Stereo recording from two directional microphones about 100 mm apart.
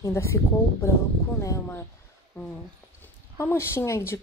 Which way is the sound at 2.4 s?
20° left (ahead or behind).